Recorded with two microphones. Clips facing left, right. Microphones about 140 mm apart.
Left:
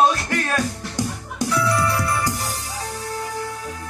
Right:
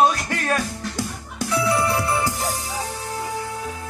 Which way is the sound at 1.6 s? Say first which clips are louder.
Right 2 dB; 25° right (ahead or behind).